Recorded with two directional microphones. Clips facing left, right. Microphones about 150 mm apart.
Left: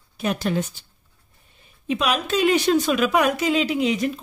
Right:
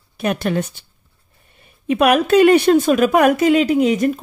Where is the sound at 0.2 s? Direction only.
60° right (ahead or behind).